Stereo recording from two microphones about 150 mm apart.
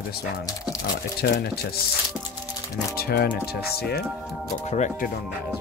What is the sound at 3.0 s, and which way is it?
Speech, 90° left.